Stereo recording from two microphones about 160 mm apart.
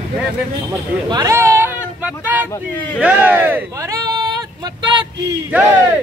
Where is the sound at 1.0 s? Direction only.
25° right (ahead or behind).